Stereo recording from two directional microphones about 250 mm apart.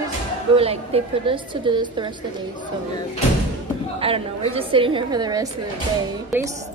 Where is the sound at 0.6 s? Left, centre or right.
Right.